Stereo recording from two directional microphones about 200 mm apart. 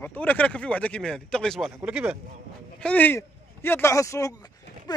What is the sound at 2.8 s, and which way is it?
Speech, 5° left (ahead or behind).